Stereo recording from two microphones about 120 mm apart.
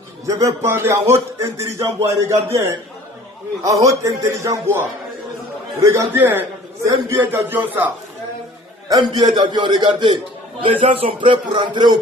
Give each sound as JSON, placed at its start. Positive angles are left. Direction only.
{"t": 0.3, "sound": "speech", "side_deg": -20}
{"t": 8.8, "sound": "a man's voice", "side_deg": -30}